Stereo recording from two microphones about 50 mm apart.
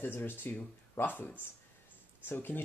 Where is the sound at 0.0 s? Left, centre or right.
Left.